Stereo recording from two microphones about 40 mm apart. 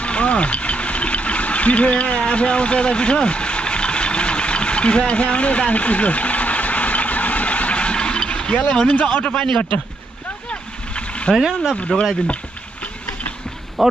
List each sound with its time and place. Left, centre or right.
0.0 s a sound: left
9.0 s speech: left
10.5 s a sound: left
11.3 s speech: centre
11.9 s speech: centre
13.8 s speech: centre